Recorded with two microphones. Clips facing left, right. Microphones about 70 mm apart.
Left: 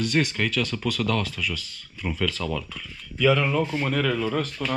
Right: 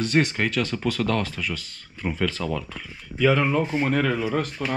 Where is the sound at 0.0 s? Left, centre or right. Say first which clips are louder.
Right 2 dB; right.